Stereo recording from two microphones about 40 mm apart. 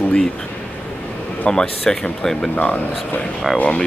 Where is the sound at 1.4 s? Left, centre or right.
Left.